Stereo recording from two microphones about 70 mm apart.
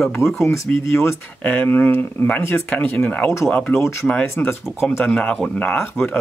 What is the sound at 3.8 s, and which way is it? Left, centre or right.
Speech, left.